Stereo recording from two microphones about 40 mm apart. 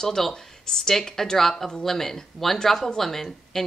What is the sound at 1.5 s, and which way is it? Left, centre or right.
Speech, centre.